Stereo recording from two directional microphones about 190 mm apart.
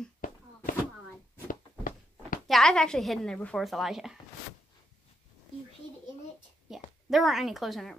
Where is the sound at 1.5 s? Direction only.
45° left (ahead or behind).